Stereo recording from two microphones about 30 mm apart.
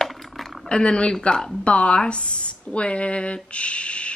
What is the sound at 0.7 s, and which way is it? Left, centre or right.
Speech, left.